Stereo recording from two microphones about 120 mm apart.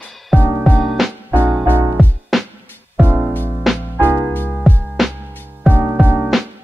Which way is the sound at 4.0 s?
15° right (ahead or behind).